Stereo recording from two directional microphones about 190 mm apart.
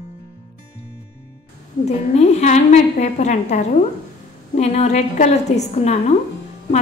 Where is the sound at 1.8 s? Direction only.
35° left (ahead or behind).